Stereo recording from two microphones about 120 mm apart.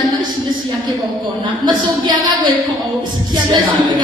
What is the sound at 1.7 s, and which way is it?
Speech, 40° right (ahead or behind).